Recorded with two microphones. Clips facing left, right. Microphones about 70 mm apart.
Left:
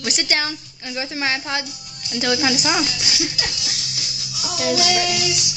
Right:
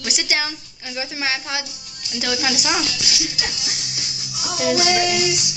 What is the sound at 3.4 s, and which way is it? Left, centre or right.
Music, centre.